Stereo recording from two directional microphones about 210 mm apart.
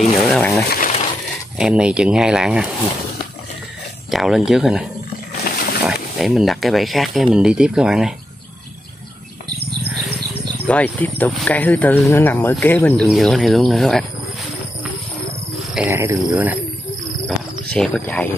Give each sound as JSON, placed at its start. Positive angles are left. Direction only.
{"t": 0.3, "sound": "a sound", "side_deg": 0}
{"t": 0.7, "sound": "a sound", "side_deg": 40}
{"t": 1.6, "sound": "speech", "side_deg": -5}
{"t": 4.1, "sound": "speech", "side_deg": 0}
{"t": 5.4, "sound": "a sound", "side_deg": 45}
{"t": 5.9, "sound": "speech", "side_deg": 0}
{"t": 10.2, "sound": "wild animals", "side_deg": -50}
{"t": 10.7, "sound": "speech", "side_deg": 5}
{"t": 15.7, "sound": "speech", "side_deg": -10}
{"t": 17.7, "sound": "speech", "side_deg": 5}